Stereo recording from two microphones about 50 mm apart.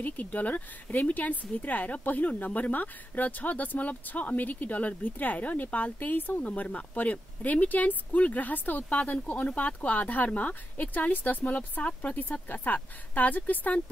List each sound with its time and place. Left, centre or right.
0.0 s speech: left